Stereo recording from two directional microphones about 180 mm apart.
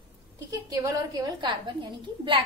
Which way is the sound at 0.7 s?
20° right (ahead or behind).